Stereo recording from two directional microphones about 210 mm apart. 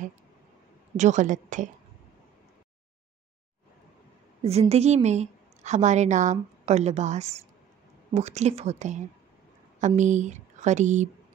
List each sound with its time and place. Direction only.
0.9 s a woman's voice: 35° right (ahead or behind)
4.4 s a woman's voice: 30° right (ahead or behind)